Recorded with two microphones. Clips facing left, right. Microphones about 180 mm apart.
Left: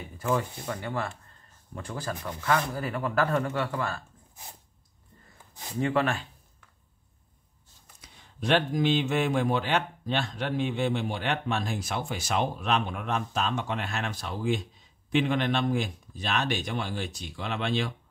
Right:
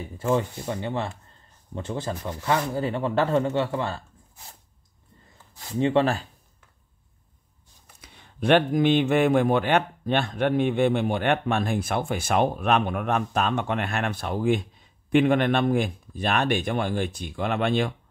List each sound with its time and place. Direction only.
0.2 s speech: 25° right (ahead or behind)
5.5 s a sound: 20° left (ahead or behind)
5.8 s speech: 25° right (ahead or behind)
8.0 s speech: 60° right (ahead or behind)